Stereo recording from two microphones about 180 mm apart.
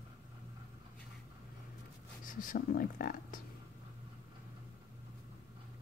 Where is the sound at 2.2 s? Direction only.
50° left (ahead or behind).